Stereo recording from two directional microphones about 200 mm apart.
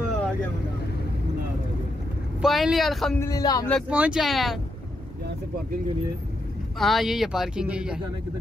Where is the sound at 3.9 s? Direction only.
5° right (ahead or behind).